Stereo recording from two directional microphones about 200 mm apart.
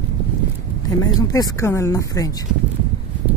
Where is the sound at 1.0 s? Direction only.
15° left (ahead or behind).